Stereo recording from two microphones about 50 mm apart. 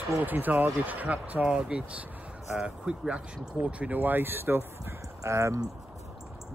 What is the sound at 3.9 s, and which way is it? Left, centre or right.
Speech, right.